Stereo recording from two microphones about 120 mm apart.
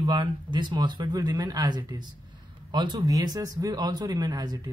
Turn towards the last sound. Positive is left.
turn(degrees=-35)  # may be behind; listen again after turning